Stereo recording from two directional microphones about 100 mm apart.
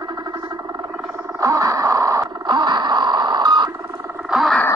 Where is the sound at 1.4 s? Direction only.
35° right (ahead or behind).